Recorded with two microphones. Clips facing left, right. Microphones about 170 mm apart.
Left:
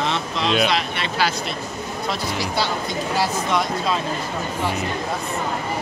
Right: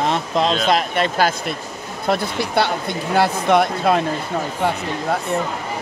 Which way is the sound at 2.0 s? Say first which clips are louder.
Right 6 dB; 60° right (ahead or behind).